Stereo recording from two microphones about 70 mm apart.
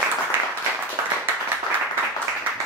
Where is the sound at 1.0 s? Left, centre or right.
Right.